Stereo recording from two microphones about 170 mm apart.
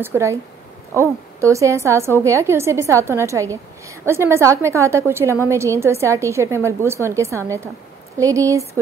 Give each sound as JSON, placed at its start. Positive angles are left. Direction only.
{"t": 0.0, "sound": "a woman's voice", "side_deg": -15}